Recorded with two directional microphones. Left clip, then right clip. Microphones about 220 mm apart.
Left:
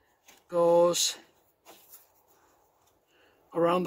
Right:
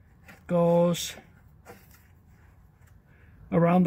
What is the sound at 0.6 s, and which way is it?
Speech, centre (ahead or behind).